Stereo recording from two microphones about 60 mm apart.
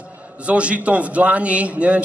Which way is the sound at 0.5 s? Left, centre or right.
Right.